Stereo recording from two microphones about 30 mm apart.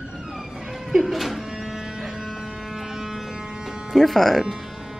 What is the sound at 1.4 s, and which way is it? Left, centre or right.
Music, centre.